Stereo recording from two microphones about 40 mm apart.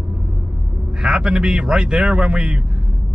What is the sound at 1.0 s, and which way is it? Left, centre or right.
A man's voice, right.